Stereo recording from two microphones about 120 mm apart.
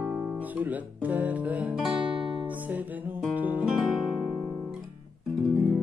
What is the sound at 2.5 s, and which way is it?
Guitar, 15° right (ahead or behind).